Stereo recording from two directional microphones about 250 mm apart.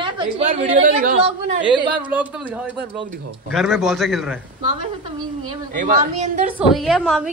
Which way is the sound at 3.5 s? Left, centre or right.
Centre.